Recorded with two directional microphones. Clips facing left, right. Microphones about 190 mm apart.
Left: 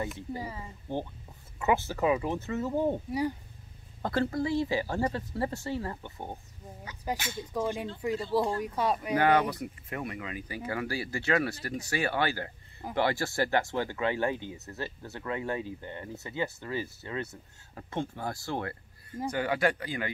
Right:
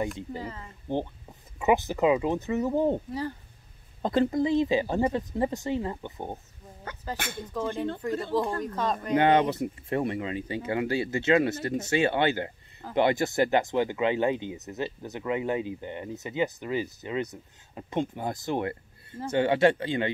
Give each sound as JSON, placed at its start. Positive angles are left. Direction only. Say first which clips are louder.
{"t": 0.4, "sound": "speech", "louder": "right 1 dB", "side_deg": 10}
{"t": 0.9, "sound": "speech", "louder": "right 5 dB", "side_deg": -20}
{"t": 3.1, "sound": "speech", "louder": "left 2 dB", "side_deg": 15}
{"t": 4.0, "sound": "speech", "louder": "right 5 dB", "side_deg": -20}
{"t": 7.2, "sound": "speech", "louder": "right 2 dB", "side_deg": -55}
{"t": 7.5, "sound": "speech", "louder": "right 2 dB", "side_deg": 10}
{"t": 9.1, "sound": "speech", "louder": "right 4 dB", "side_deg": -25}